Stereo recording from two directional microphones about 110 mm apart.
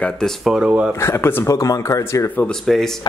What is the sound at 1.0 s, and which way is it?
Speech, 20° left (ahead or behind).